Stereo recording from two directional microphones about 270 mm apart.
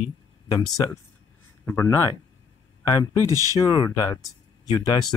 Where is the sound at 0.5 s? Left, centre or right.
Centre.